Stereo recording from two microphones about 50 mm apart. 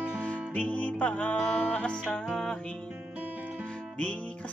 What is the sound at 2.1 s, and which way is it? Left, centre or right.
Music, centre.